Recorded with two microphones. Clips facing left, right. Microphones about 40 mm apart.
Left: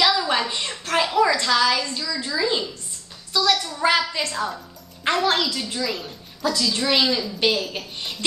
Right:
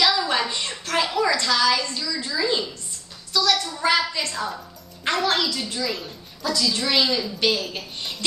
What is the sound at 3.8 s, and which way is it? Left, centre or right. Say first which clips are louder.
Speech: left 1 dB; centre.